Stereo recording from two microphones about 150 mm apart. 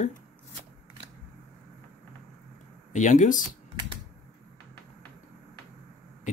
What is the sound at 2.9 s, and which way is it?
Speech, 55° left (ahead or behind).